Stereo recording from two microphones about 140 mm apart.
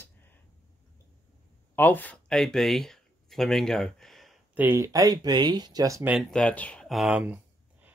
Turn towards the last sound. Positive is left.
turn(degrees=-10)  # may be behind; listen again after turning